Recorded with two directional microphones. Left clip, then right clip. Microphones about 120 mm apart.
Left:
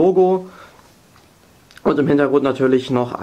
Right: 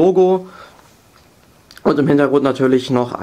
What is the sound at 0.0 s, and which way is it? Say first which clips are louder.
Speech: right 2 dB; 35° right (ahead or behind).